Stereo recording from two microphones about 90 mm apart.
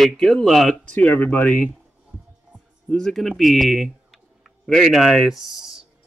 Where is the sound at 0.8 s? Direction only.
15° left (ahead or behind).